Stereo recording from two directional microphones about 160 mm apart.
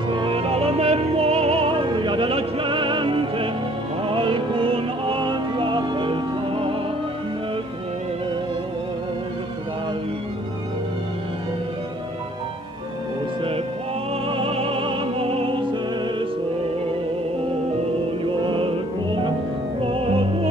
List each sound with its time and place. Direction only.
0.1 s music: 35° right (ahead or behind)
14.2 s music: 35° right (ahead or behind)
18.4 s music: 30° right (ahead or behind)
19.8 s music: 35° right (ahead or behind)